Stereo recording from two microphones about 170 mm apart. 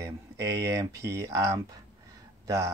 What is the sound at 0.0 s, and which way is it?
Speech, 20° right (ahead or behind).